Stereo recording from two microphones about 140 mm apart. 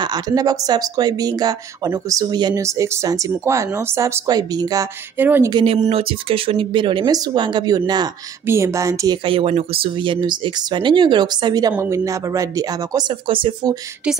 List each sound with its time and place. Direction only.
0.0 s speech: 30° right (ahead or behind)
5.1 s speech: 15° right (ahead or behind)
5.5 s speech: 35° right (ahead or behind)
8.5 s speech: 20° right (ahead or behind)
13.1 s speech: 40° right (ahead or behind)